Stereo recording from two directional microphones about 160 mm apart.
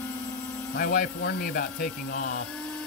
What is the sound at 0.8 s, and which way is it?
Speech, 70° left (ahead or behind).